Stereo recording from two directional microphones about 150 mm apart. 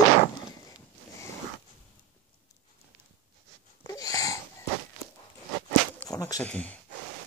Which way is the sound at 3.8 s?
25° left (ahead or behind).